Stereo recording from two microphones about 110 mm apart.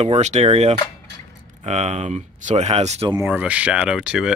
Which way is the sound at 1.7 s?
90° right.